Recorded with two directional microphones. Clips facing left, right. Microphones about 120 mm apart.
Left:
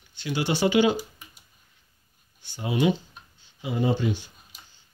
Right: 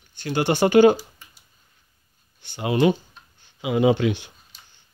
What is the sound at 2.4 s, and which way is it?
Computer keyboard, 65° right (ahead or behind).